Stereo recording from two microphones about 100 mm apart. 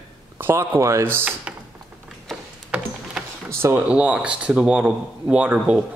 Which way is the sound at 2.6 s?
10° right (ahead or behind).